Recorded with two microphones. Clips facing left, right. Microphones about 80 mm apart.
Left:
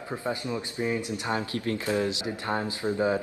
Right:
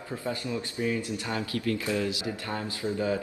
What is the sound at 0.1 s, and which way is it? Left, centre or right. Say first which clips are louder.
Speech: left 1 dB; left.